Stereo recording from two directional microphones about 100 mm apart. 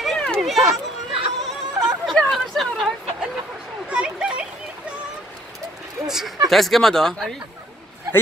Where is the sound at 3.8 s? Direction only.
10° right (ahead or behind).